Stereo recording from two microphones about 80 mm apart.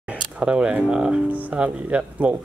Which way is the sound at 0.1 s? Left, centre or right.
Centre.